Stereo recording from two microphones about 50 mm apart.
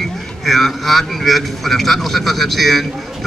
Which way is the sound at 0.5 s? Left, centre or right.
Centre.